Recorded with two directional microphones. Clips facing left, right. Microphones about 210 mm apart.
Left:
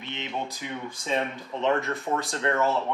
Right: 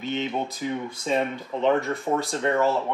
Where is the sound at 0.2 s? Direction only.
35° right (ahead or behind).